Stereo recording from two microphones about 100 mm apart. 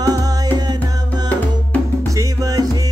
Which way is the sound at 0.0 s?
40° right (ahead or behind).